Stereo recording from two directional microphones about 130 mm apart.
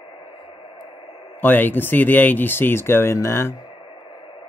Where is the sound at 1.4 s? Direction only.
15° left (ahead or behind).